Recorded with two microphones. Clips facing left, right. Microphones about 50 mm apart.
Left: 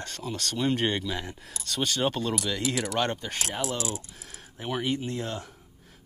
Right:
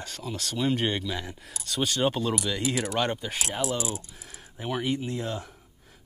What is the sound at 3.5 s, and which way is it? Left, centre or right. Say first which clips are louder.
Speech: right 2 dB; right.